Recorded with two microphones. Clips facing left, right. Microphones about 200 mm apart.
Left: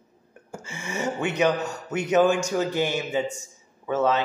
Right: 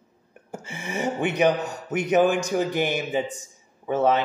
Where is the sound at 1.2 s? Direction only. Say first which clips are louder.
Right 1 dB; 15° right (ahead or behind).